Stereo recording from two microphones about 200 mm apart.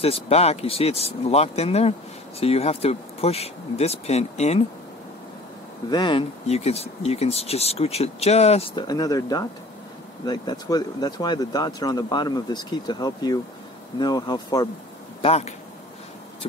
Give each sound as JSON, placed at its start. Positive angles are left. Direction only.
{"t": 0.0, "sound": "speech", "side_deg": 30}
{"t": 5.9, "sound": "speech", "side_deg": 25}
{"t": 15.2, "sound": "speech", "side_deg": 30}